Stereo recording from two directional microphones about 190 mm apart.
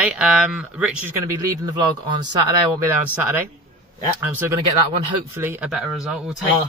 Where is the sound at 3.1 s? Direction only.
10° right (ahead or behind).